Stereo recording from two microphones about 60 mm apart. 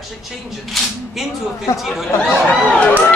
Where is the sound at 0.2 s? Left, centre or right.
Centre.